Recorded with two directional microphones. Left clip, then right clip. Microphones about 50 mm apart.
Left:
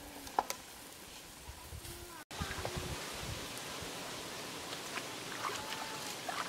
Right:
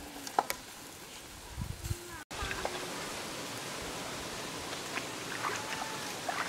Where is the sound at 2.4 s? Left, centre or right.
Left; by 4.7 s centre.